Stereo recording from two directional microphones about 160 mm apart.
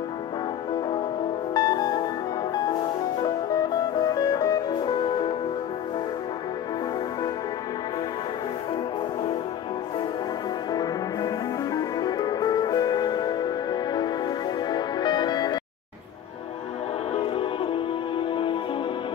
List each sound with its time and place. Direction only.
1.5 s music: 25° left (ahead or behind)
4.0 s music: 25° left (ahead or behind)
10.7 s music: 25° left (ahead or behind)
17.1 s music: 35° left (ahead or behind)